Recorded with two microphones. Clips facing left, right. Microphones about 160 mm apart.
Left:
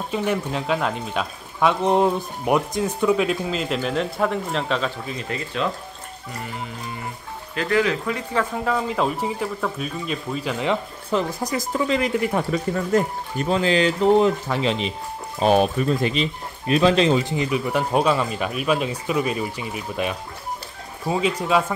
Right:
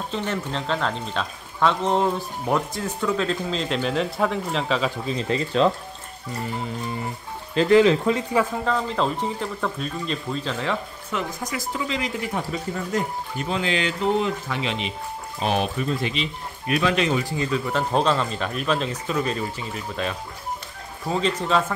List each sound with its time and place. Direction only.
0.1 s speech: 10° left (ahead or behind)
5.0 s speech: 30° right (ahead or behind)
7.5 s speech: 25° right (ahead or behind)
8.5 s speech: 5° left (ahead or behind)
11.1 s speech: 35° left (ahead or behind); by 13.1 s 50° left (ahead or behind)
13.5 s speech: 40° left (ahead or behind)
16.6 s speech: 30° left (ahead or behind); by 21.7 s 10° left (ahead or behind)